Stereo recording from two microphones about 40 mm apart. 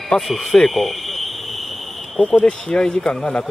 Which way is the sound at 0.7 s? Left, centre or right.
Centre.